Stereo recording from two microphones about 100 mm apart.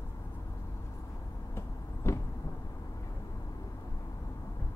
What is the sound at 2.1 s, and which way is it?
Vehicle, 25° left (ahead or behind).